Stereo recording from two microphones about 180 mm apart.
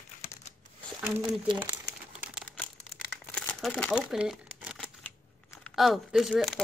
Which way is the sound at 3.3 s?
5° left (ahead or behind).